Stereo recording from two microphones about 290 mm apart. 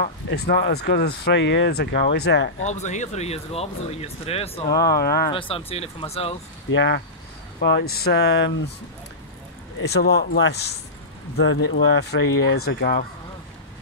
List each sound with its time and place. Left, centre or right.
0.0 s speech: left
2.6 s speech: left
4.8 s speech: left
5.3 s speech: centre
6.7 s speech: left
9.8 s speech: left